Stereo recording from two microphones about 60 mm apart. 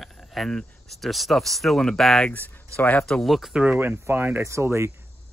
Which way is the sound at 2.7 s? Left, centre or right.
Left.